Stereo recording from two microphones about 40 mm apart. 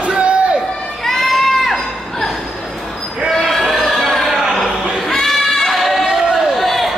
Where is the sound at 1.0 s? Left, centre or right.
Centre.